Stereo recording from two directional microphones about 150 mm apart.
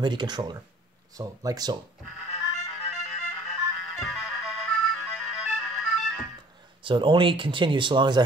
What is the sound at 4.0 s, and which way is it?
Music, centre (ahead or behind).